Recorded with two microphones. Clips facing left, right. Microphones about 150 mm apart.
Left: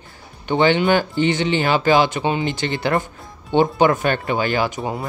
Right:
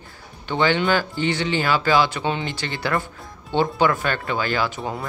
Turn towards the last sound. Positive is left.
turn(degrees=20)  # may be behind; listen again after turning